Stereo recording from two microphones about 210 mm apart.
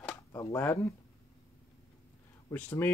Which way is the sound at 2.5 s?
10° left (ahead or behind).